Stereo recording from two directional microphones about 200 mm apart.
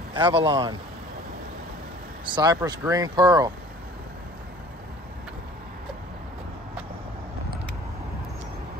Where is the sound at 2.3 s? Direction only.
20° right (ahead or behind).